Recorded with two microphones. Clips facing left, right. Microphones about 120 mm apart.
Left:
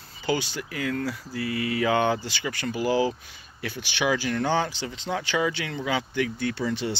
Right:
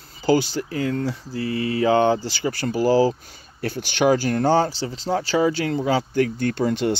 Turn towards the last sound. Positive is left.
turn(degrees=-50)  # may be behind; listen again after turning